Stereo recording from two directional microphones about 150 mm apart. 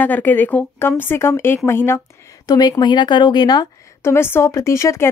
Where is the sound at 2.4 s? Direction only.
25° left (ahead or behind).